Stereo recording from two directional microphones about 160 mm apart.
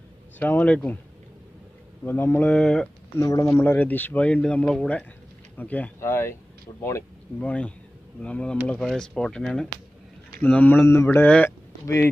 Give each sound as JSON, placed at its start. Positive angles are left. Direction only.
{"t": 0.4, "sound": "speech", "side_deg": 10}
{"t": 2.0, "sound": "speech", "side_deg": 10}
{"t": 3.2, "sound": "speech", "side_deg": 20}